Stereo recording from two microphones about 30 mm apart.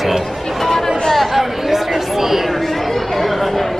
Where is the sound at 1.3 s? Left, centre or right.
Centre.